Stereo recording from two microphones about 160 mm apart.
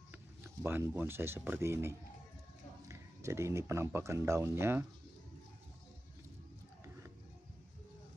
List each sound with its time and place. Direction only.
0.1 s speech: 15° right (ahead or behind)